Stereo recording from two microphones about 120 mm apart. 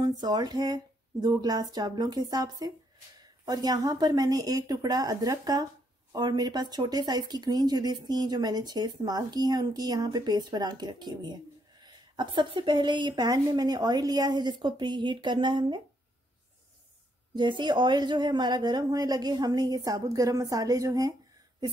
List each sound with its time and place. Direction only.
0.0 s speech: 35° right (ahead or behind)
17.4 s speech: 40° right (ahead or behind)